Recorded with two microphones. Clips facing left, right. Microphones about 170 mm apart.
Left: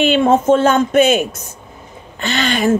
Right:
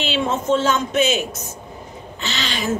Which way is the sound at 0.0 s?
55° left (ahead or behind).